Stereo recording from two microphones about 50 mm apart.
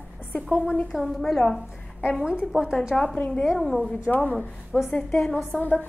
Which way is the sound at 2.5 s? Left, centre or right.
Centre.